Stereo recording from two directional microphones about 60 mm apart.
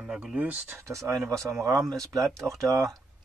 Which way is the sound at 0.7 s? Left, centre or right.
Right.